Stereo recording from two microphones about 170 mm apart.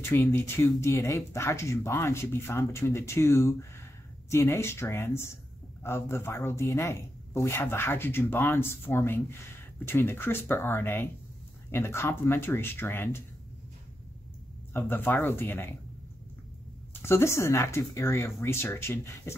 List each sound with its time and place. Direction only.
0.0 s speech: 15° left (ahead or behind)
14.7 s speech: 10° left (ahead or behind)
16.9 s speech: 15° left (ahead or behind)